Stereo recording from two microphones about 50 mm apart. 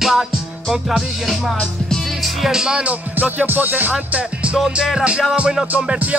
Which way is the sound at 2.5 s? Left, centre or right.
Centre.